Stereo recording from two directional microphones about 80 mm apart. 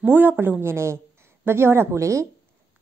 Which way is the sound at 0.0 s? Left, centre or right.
Right.